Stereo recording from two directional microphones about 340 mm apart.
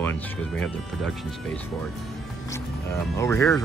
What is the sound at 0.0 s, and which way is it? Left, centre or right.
Speech, centre.